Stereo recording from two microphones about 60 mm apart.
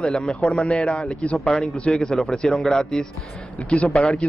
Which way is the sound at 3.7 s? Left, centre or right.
Left.